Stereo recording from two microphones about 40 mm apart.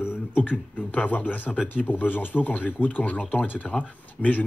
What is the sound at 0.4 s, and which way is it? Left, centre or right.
A man's voice, left.